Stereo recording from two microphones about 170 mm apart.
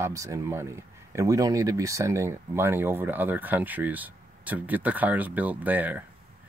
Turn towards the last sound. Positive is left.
turn(degrees=-10)  # may be behind; listen again after turning